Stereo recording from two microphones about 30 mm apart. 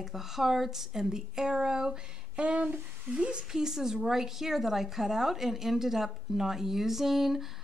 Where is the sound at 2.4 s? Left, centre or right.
Right.